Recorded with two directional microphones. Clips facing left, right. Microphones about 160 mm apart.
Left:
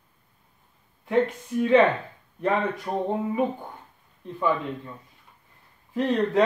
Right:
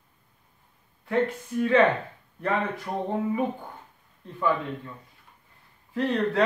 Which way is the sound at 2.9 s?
15° left (ahead or behind).